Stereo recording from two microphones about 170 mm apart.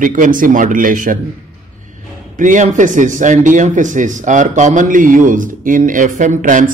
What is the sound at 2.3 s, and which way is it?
Speech, 50° right (ahead or behind).